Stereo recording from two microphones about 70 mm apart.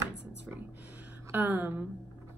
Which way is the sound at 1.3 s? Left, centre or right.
Right.